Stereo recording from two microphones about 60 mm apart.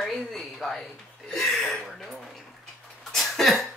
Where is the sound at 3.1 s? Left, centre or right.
Centre.